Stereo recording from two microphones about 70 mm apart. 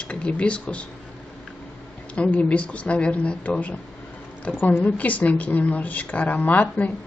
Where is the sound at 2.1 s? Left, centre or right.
Centre.